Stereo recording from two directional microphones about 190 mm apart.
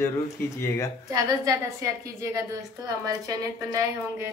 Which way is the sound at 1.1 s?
15° right (ahead or behind).